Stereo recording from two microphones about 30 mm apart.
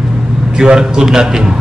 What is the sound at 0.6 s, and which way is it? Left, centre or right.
Speech, right.